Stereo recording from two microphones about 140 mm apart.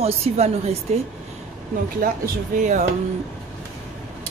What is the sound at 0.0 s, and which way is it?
Speech, 45° right (ahead or behind).